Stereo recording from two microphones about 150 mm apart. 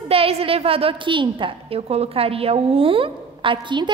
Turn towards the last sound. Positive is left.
turn(degrees=-30)  # may be behind; listen again after turning